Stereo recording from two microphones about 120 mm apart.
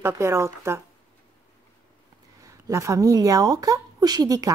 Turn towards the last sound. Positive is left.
turn(degrees=-30)  # may be behind; listen again after turning